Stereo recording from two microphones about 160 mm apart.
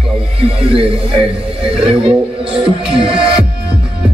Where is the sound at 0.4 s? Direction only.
35° right (ahead or behind).